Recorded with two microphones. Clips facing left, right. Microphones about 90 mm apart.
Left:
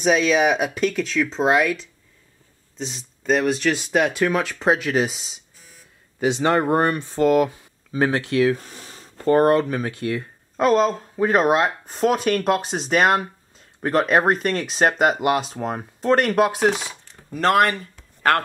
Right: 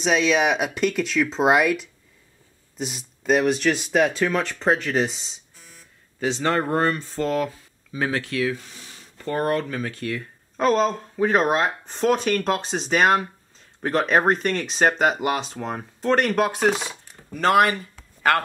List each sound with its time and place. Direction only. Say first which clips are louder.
0.0 s speech: left 2 dB; 5° left (ahead or behind); by 8.3 s 20° left (ahead or behind)
8.5 s a sound: left 6 dB; 45° left (ahead or behind)
9.5 s speech: left 5 dB; 20° left (ahead or behind)
10.6 s speech: left 2 dB; 5° left (ahead or behind)